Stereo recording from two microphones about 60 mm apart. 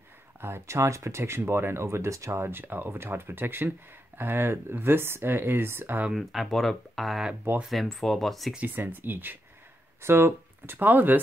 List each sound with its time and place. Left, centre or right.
0.4 s speech: right
2.4 s speech: right
6.1 s speech: centre
8.5 s speech: right